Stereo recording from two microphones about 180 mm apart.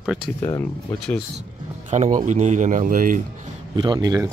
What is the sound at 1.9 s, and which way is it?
Speech, 40° right (ahead or behind).